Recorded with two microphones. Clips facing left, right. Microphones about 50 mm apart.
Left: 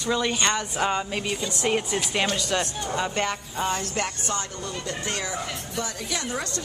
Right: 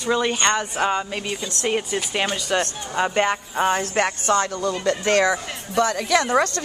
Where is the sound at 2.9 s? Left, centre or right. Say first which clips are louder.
Right 7 dB; right.